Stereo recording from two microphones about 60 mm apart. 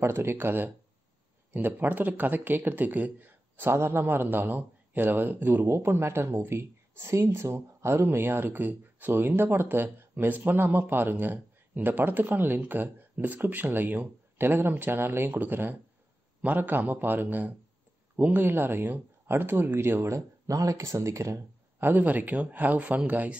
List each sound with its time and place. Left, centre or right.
0.0 s speech: right
20.1 s speech: right
21.7 s speech: right